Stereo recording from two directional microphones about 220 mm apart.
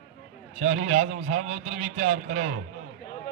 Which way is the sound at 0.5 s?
30° right (ahead or behind).